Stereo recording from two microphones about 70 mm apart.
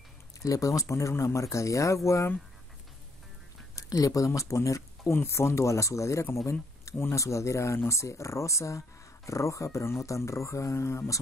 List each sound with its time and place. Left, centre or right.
0.4 s speech: left
3.7 s speech: left